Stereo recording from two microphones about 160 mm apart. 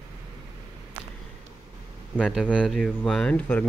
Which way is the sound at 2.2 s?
Centre (ahead or behind).